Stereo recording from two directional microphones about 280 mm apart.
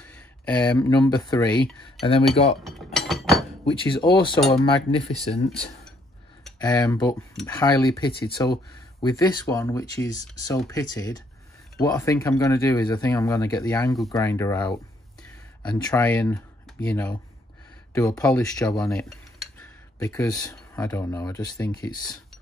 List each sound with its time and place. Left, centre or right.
0.0 s a sound: centre
0.7 s speech: centre
2.0 s cutlery: left
2.6 s chink: centre
3.6 s speech: centre